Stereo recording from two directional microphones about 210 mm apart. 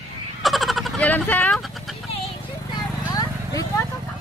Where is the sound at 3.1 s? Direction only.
15° left (ahead or behind).